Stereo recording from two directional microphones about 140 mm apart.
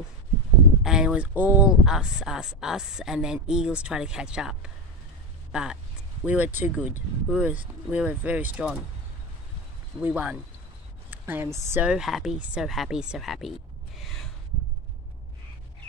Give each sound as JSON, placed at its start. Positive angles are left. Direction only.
{"t": 0.8, "sound": "speech", "side_deg": -5}
{"t": 10.0, "sound": "speech", "side_deg": -10}
{"t": 11.8, "sound": "speech", "side_deg": -5}